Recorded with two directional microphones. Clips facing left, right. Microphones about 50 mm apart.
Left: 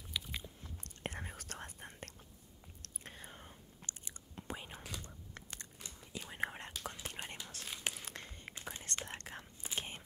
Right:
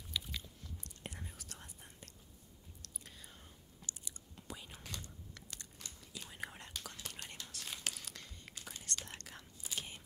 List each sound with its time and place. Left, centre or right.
0.3 s biting: left
0.8 s whispering: left
2.8 s chewing: left
5.0 s a sound: left
5.8 s whispering: centre